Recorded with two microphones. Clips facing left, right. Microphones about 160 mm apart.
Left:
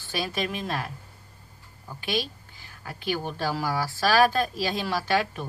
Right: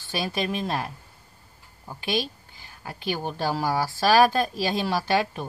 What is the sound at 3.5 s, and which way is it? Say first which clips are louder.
Speech: right 3 dB; 20° right (ahead or behind).